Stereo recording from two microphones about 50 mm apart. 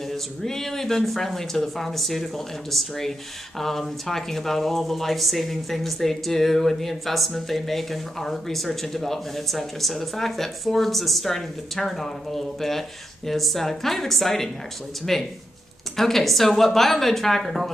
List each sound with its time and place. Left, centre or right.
0.0 s speech: centre